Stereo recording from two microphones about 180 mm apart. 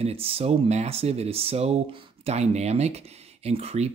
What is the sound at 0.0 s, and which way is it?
Speech, 30° right (ahead or behind).